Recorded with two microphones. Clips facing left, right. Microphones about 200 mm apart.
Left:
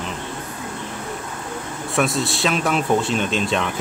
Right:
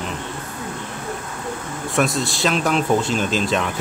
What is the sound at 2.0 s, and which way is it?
Speech, centre (ahead or behind).